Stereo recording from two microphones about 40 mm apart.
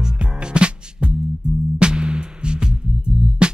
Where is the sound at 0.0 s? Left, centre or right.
Right.